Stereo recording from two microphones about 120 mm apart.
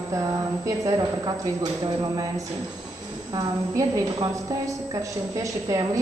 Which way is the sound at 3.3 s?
35° right (ahead or behind).